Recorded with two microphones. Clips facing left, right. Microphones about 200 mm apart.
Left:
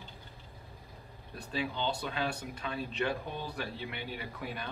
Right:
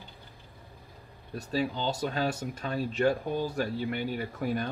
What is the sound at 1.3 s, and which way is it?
Speech, 40° right (ahead or behind).